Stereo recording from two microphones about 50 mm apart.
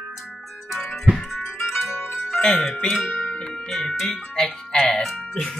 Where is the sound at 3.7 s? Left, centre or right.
Centre.